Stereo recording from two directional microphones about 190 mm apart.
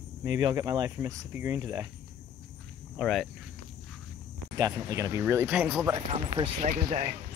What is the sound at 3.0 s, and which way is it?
Speech, centre (ahead or behind).